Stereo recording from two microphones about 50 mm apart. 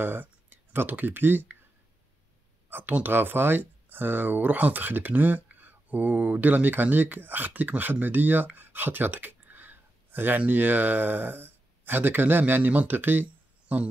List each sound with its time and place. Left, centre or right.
0.0 s speech: right
2.7 s speech: right